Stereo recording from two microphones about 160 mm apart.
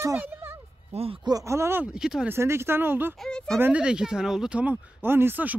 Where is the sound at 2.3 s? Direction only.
15° right (ahead or behind).